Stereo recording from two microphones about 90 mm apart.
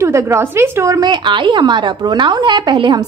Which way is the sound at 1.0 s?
60° right (ahead or behind).